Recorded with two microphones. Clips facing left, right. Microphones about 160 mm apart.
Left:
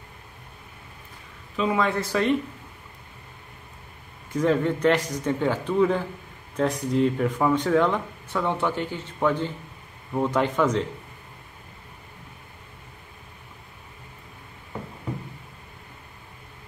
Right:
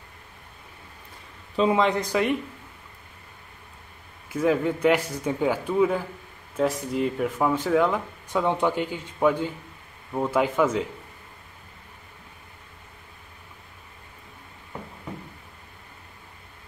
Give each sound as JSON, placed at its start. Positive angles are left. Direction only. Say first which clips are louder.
{"t": 1.6, "sound": "a man's voice", "louder": "right 3 dB", "side_deg": -20}
{"t": 4.3, "sound": "a man's voice", "louder": "left 1 dB", "side_deg": -5}